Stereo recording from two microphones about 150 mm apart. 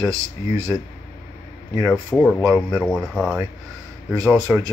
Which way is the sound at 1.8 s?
10° left (ahead or behind).